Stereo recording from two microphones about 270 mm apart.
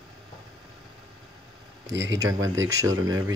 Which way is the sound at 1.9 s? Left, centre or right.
Right.